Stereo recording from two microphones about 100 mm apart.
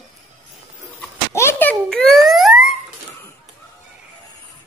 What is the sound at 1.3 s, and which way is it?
Speech, 25° left (ahead or behind).